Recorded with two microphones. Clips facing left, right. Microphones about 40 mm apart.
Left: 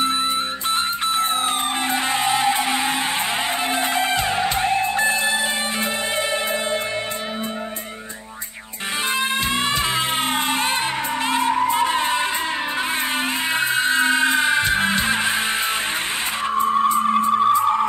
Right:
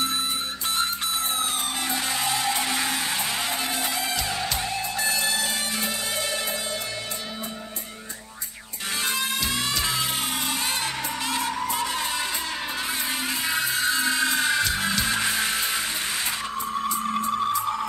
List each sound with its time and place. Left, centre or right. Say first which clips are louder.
0.7 s music: left 4 dB; left
9.1 s music: left 6 dB; left
13.5 s music: left 5 dB; left
16.5 s music: left 12 dB; left